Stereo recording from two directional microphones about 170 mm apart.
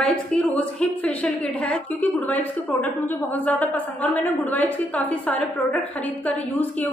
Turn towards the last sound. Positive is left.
turn(degrees=10)  # may be behind; listen again after turning